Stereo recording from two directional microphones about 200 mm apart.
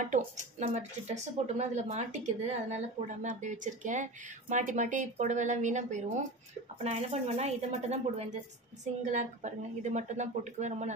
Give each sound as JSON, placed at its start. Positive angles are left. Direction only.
{"t": 0.0, "sound": "speech", "side_deg": -40}
{"t": 9.1, "sound": "speech", "side_deg": -35}